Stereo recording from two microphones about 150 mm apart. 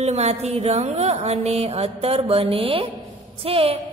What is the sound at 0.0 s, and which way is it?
A woman's voice, 45° right (ahead or behind).